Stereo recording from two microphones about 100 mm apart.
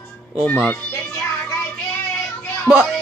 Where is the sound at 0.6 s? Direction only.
20° left (ahead or behind).